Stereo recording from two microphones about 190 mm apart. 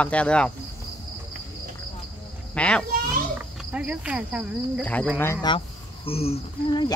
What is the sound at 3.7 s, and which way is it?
Speech, 5° right (ahead or behind).